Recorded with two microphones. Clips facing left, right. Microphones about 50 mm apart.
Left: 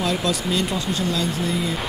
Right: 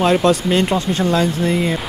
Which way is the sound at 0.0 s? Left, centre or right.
Right.